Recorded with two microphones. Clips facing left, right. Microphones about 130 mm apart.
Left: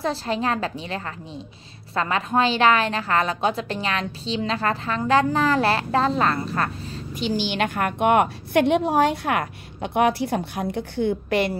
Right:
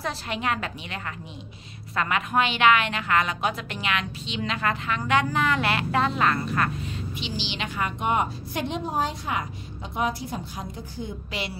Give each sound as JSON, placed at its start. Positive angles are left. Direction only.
{"t": 0.0, "sound": "a woman's voice", "side_deg": 30}